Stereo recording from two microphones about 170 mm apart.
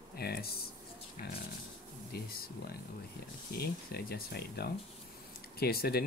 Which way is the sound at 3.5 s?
65° left (ahead or behind).